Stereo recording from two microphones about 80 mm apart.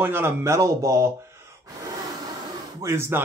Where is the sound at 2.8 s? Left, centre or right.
Right.